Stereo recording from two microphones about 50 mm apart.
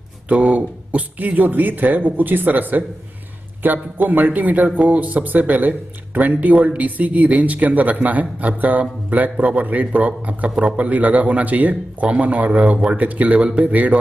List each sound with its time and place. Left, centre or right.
0.3 s a man's voice: right